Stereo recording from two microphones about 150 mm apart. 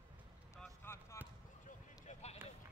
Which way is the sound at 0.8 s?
15° left (ahead or behind).